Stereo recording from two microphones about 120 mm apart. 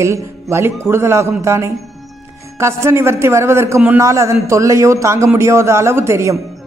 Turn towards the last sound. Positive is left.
turn(degrees=-25)  # may be behind; listen again after turning